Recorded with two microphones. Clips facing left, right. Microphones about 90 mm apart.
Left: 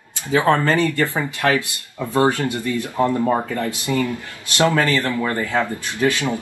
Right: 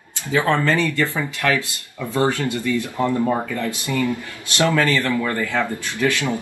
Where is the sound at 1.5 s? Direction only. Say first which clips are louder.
Left 1 dB; 20° left (ahead or behind).